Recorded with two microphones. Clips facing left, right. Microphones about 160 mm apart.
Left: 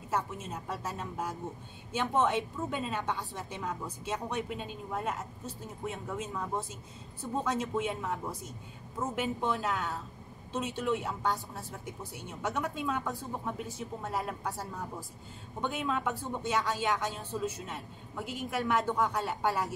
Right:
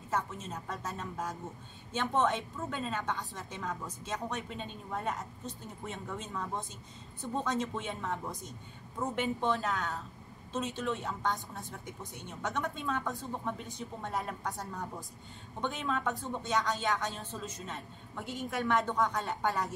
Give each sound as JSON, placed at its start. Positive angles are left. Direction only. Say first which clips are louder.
{"t": 0.1, "sound": "a woman's voice", "louder": "left 1 dB", "side_deg": 10}
{"t": 10.5, "sound": "a woman's voice", "louder": "left 3 dB", "side_deg": 10}